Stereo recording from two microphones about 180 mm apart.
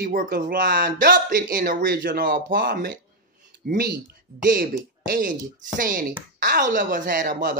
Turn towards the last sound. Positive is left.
turn(degrees=-50)  # may be behind; listen again after turning